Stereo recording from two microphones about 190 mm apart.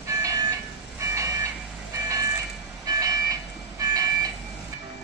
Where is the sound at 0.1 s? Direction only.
15° right (ahead or behind).